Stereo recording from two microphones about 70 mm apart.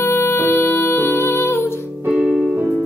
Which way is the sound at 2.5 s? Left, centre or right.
Centre.